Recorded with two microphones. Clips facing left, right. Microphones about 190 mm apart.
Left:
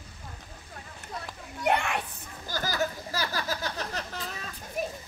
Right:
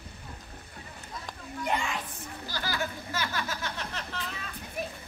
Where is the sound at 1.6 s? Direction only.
65° left (ahead or behind).